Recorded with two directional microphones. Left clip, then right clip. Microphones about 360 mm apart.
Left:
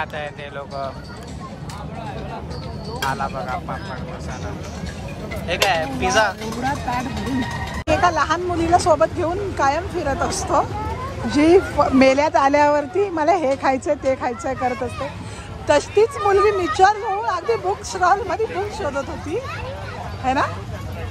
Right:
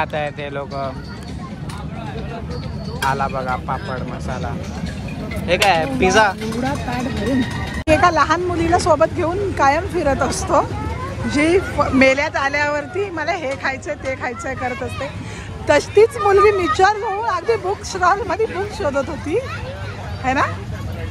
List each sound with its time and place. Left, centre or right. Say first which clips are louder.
0.0 s speech: right 5 dB; centre
3.1 s speech: right 5 dB; centre
5.7 s speech: right 4 dB; centre
6.9 s speech: right 2 dB; left
7.8 s speech: right 4 dB; centre